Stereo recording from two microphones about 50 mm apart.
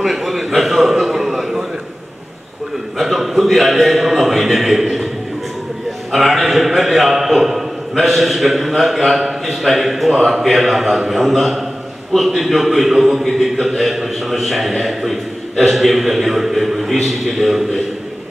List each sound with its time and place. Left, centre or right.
0.0 s a sound: centre
3.0 s a man's voice: centre
6.1 s a man's voice: centre